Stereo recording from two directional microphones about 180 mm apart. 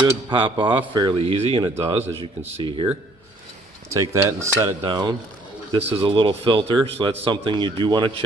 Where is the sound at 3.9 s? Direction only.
15° right (ahead or behind).